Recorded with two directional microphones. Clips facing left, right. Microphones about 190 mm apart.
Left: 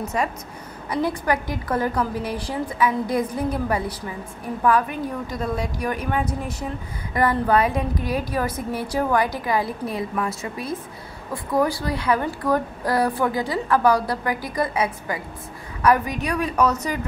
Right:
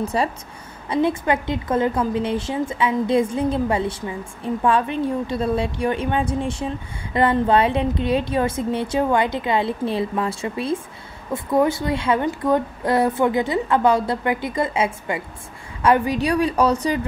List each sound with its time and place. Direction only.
0.0 s a woman's voice: 30° right (ahead or behind)